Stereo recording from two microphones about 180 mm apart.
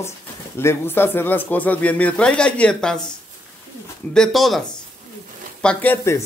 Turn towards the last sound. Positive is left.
turn(degrees=15)  # may be behind; listen again after turning